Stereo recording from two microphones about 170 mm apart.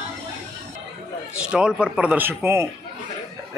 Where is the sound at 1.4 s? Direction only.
5° right (ahead or behind).